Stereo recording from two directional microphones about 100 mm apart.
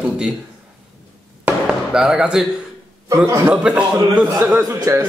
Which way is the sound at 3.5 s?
10° right (ahead or behind).